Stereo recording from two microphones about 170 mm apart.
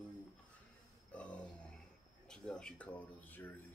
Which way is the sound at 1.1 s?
5° left (ahead or behind).